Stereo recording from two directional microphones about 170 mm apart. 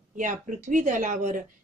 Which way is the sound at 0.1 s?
50° right (ahead or behind).